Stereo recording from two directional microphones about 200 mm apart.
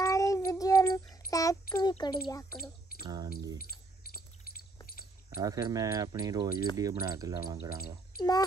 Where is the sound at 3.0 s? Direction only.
20° right (ahead or behind).